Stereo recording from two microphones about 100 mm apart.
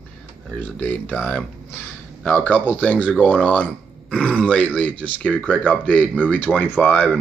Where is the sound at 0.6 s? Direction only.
20° left (ahead or behind).